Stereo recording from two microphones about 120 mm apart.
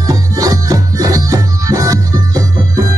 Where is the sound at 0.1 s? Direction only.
30° right (ahead or behind).